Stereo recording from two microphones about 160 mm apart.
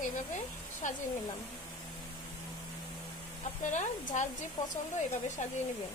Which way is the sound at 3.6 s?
50° left (ahead or behind).